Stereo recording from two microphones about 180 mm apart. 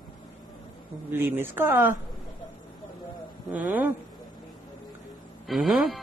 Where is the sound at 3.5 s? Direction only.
10° right (ahead or behind).